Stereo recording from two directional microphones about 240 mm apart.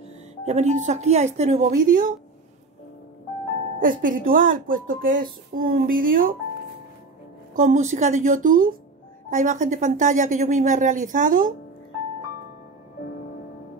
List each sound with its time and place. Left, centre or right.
0.5 s a woman's voice: right
3.8 s a woman's voice: right
7.5 s a woman's voice: right